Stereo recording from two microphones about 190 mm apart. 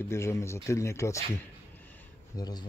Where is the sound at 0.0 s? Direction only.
15° left (ahead or behind).